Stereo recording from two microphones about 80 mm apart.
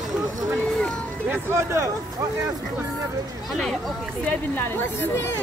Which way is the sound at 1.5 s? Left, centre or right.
Right.